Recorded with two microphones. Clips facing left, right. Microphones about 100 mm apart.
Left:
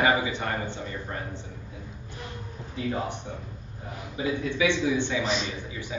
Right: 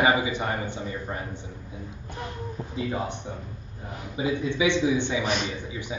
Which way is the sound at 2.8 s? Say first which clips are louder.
Even; 20° right (ahead or behind).